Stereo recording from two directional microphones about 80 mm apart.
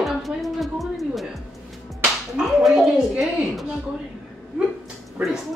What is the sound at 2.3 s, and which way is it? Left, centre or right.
Speech, centre.